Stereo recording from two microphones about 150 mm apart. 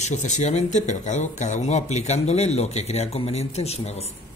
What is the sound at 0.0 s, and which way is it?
Speech, 55° left (ahead or behind).